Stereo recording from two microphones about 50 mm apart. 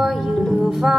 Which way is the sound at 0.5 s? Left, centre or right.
Centre.